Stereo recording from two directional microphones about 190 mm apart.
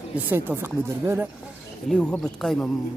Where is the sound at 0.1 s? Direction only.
10° right (ahead or behind).